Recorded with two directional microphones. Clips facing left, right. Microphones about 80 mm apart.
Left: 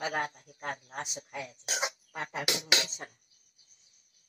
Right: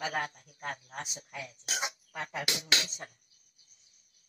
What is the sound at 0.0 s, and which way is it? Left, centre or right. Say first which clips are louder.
A man's voice: left 1 dB; left.